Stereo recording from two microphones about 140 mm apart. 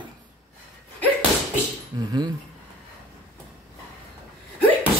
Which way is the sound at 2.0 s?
30° right (ahead or behind).